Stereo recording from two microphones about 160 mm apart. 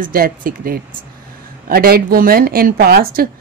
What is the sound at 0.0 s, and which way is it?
A woman's voice, 60° right (ahead or behind).